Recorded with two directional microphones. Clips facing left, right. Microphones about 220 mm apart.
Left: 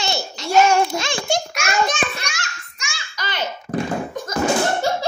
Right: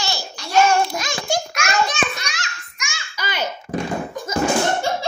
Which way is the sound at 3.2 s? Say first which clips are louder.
Right 1 dB; 10° right (ahead or behind).